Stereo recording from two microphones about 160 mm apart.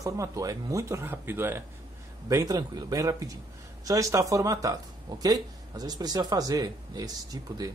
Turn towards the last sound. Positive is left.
turn(degrees=-25)  # may be behind; listen again after turning